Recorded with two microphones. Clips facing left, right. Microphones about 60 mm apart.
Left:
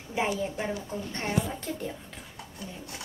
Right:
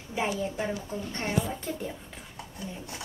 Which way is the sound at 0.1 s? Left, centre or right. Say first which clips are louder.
Left 1 dB; centre.